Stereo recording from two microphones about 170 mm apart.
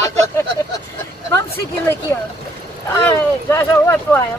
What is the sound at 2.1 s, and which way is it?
Speech, 15° left (ahead or behind).